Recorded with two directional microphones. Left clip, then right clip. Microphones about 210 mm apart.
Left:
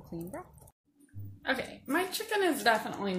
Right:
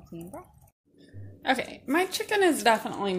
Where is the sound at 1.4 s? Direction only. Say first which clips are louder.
Right 6 dB; 35° right (ahead or behind).